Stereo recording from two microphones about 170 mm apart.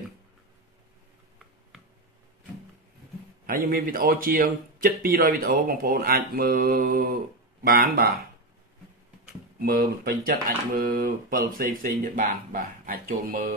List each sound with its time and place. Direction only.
3.4 s speech: 60° right (ahead or behind)
9.6 s speech: 60° right (ahead or behind)